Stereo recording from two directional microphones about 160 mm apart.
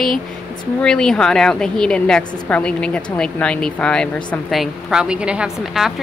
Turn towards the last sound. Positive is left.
turn(degrees=0)  # may be behind; listen again after turning